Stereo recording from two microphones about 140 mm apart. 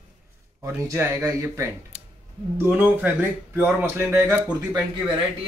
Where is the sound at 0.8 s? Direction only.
20° right (ahead or behind).